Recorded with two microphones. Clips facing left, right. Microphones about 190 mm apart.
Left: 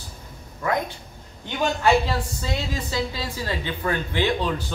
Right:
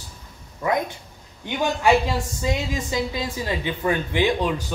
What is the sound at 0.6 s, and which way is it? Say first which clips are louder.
A man's voice: right 2 dB; 15° right (ahead or behind).